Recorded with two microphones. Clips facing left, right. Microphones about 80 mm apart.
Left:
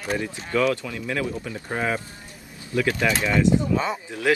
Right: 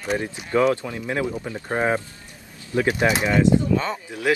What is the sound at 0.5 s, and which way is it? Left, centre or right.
Speech, right.